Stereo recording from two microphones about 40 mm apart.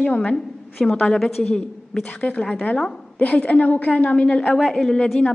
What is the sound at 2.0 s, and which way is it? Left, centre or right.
A woman's voice, left.